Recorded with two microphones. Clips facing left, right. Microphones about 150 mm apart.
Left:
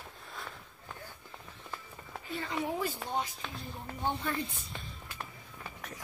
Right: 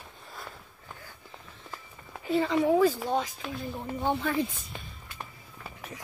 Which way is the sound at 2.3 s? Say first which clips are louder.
Right 11 dB; 90° right.